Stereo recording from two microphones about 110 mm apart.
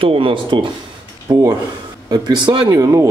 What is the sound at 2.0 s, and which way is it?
Speech, 40° right (ahead or behind).